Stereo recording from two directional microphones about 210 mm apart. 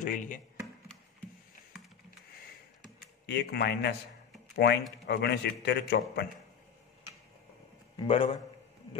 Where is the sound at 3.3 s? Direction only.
50° left (ahead or behind).